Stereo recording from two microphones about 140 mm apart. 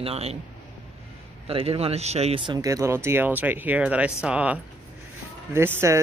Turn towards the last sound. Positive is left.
turn(degrees=-20)  # may be behind; listen again after turning